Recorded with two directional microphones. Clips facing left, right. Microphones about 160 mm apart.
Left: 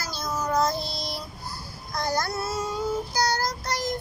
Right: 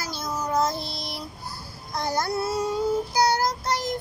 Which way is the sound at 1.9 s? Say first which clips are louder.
Right 1 dB; 25° right (ahead or behind).